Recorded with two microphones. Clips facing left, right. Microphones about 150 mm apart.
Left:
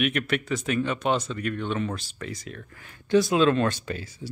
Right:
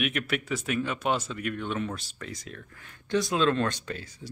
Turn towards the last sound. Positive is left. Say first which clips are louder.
# left 4 dB
turn(degrees=5)  # may be behind; listen again after turning